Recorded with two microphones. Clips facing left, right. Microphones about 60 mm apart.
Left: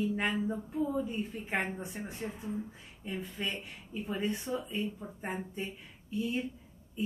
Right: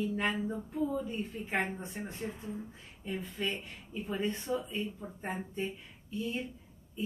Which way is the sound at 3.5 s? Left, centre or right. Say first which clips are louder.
Left 1 dB; centre.